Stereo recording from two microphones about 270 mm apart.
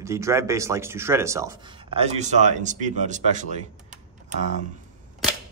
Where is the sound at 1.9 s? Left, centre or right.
Right.